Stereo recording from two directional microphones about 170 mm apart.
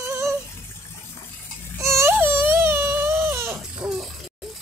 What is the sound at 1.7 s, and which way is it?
Baby cry, 15° right (ahead or behind).